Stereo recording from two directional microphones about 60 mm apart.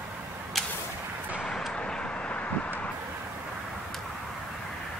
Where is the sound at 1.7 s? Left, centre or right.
Centre.